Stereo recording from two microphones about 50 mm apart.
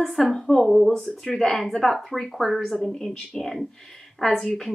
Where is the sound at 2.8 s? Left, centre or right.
Centre.